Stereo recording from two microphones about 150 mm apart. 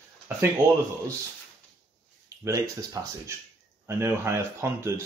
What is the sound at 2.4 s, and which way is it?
Speech, 25° right (ahead or behind).